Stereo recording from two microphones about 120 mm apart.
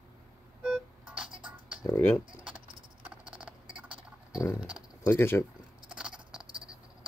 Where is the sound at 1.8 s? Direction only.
20° left (ahead or behind).